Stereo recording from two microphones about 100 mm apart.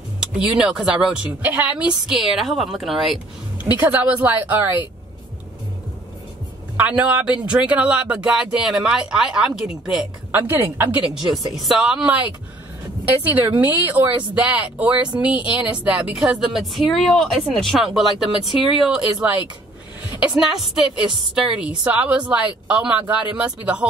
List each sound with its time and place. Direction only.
0.2 s speech: 5° right (ahead or behind)
2.1 s a woman's voice: centre (ahead or behind)
3.8 s speech: 15° right (ahead or behind)
6.8 s speech: 15° right (ahead or behind)
10.3 s a woman's voice: 20° right (ahead or behind)
11.3 s a woman's voice: centre (ahead or behind)
19.1 s a woman's voice: 15° right (ahead or behind)